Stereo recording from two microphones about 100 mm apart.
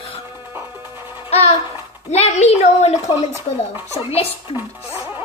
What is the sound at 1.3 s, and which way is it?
Music, 90° left.